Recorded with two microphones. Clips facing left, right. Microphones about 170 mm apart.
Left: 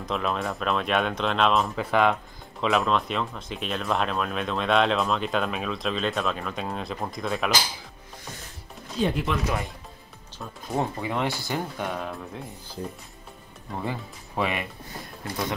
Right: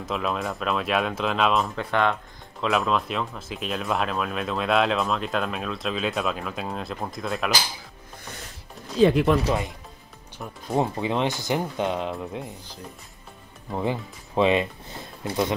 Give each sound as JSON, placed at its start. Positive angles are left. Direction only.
{"t": 0.0, "sound": "speech", "side_deg": 0}
{"t": 9.0, "sound": "speech", "side_deg": -75}
{"t": 10.4, "sound": "speech", "side_deg": -20}
{"t": 13.7, "sound": "speech", "side_deg": -20}